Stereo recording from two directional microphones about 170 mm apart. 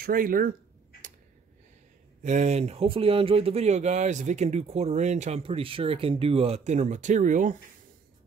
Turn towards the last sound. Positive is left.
turn(degrees=-50)  # may be behind; listen again after turning